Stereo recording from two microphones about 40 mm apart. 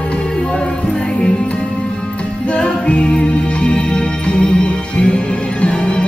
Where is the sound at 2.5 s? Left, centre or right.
Left.